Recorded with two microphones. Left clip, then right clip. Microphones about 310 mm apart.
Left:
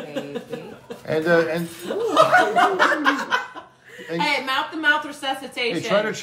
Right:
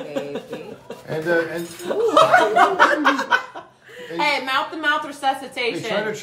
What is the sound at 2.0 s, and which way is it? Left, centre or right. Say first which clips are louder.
A woman's voice: right 2 dB; right.